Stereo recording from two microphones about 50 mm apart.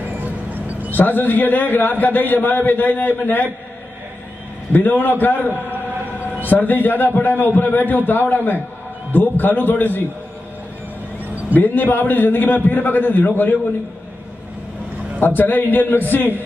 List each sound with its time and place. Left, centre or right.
0.2 s a sound: right
0.9 s a man's voice: left
4.7 s a man's voice: left
11.5 s a man's voice: left
15.1 s a man's voice: left